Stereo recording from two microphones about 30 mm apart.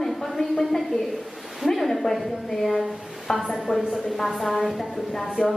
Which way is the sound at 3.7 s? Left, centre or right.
Left.